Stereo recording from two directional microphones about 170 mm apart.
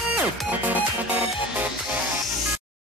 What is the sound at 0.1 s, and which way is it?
Music, 10° right (ahead or behind).